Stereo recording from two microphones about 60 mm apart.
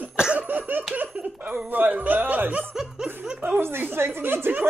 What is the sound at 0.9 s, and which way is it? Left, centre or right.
Giggle, right.